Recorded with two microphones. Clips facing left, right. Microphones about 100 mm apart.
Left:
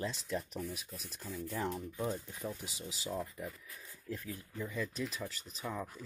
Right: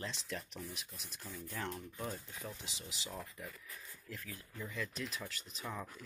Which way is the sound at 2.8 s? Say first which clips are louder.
Left 8 dB; 35° left (ahead or behind).